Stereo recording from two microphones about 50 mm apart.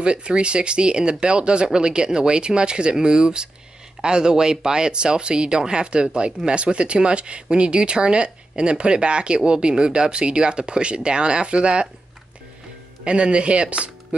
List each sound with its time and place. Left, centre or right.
0.0 s speech: centre
13.0 s speech: right